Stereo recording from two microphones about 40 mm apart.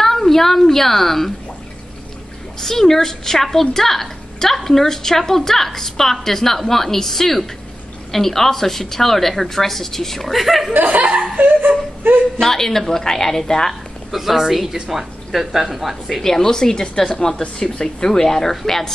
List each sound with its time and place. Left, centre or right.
0.0 s a woman's voice: centre
2.6 s a woman's voice: centre
10.7 s chuckle: right
12.1 s a woman's voice: right
12.4 s a woman's voice: centre
14.1 s speech: centre
16.3 s a woman's voice: centre